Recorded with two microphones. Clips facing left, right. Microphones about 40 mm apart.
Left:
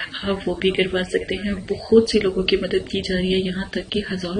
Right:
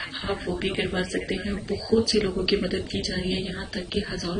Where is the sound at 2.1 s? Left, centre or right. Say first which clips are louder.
Left 5 dB; left.